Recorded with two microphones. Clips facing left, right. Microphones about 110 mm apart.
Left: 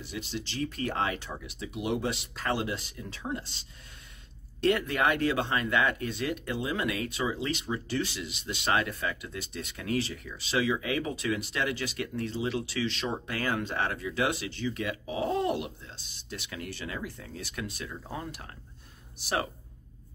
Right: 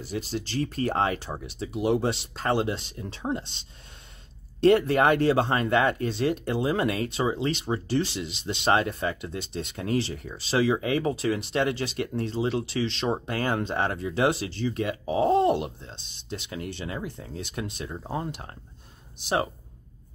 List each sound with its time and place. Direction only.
0.0 s speech: 40° right (ahead or behind); by 19.4 s 20° right (ahead or behind)